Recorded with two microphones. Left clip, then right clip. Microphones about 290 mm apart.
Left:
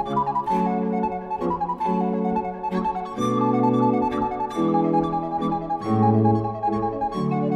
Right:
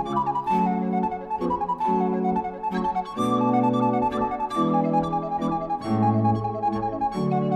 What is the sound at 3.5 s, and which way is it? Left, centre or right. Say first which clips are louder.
Music: left 1 dB; right.